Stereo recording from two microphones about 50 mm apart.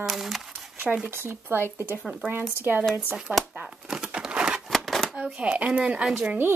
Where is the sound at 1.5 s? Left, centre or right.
Right.